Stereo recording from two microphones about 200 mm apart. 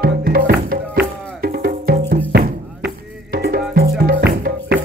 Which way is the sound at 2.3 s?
55° right (ahead or behind).